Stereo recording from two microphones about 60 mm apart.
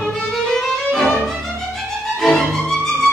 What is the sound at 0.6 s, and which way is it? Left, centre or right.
Violin, centre.